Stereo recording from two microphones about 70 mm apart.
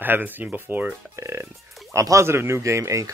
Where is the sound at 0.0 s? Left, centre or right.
Right.